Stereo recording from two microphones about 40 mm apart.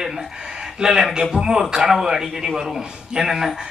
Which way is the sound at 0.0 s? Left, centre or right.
Centre.